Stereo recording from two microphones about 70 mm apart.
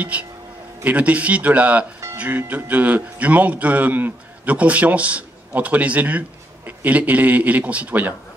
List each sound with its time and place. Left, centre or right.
0.1 s speech: centre